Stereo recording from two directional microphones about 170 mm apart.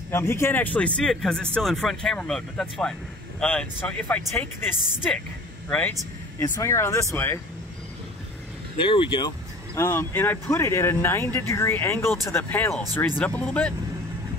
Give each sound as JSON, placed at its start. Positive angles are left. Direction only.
{"t": 0.1, "sound": "speech", "side_deg": 15}
{"t": 8.7, "sound": "speech", "side_deg": 30}
{"t": 9.8, "sound": "speech", "side_deg": 15}